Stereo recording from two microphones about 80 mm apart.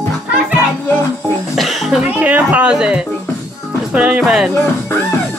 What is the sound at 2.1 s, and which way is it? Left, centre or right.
Speech, centre.